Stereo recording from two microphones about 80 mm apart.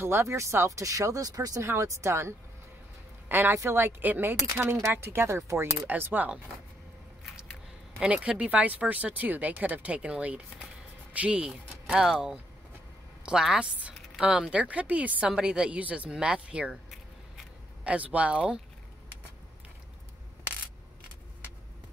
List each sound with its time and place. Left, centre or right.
0.0 s speech: right
1.7 s speech: right
5.9 s speech: right
8.0 s a woman's voice: centre
17.8 s a woman's voice: centre